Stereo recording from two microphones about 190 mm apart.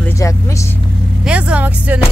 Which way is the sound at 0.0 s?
15° left (ahead or behind).